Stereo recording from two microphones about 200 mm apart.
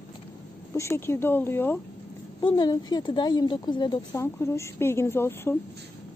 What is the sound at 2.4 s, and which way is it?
A woman's voice, 20° left (ahead or behind).